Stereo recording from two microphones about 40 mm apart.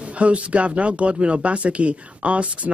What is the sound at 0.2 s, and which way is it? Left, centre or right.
Speech, right.